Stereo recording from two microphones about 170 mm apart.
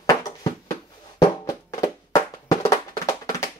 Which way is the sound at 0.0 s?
20° left (ahead or behind).